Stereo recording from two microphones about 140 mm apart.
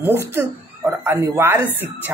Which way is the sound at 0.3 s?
15° right (ahead or behind).